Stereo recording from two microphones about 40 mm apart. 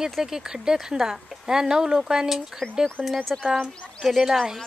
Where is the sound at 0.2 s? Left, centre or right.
Centre.